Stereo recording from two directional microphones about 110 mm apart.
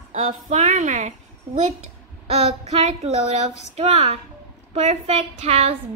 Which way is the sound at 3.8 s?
80° right.